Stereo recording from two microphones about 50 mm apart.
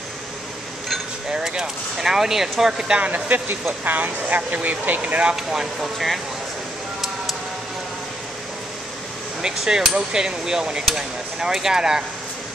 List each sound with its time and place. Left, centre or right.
1.3 s speech: centre
3.1 s speech: right
5.3 s speech: centre
9.4 s speech: centre